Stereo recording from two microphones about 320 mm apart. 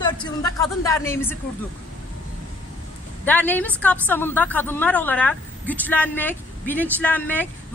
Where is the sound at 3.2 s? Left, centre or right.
Centre.